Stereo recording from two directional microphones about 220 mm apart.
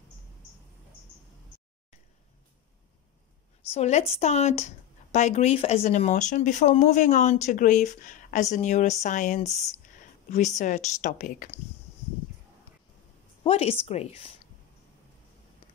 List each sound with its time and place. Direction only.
3.7 s speech: 30° left (ahead or behind)
10.6 s speech: 35° left (ahead or behind)
13.4 s a woman's voice: 25° left (ahead or behind)